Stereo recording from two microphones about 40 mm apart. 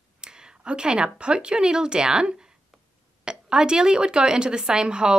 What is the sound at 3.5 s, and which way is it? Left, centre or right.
A woman's voice, centre.